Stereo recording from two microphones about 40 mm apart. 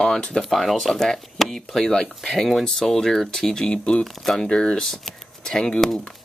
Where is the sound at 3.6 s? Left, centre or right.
Left.